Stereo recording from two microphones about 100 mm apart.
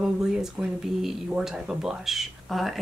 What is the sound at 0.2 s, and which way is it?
Speech, 5° right (ahead or behind).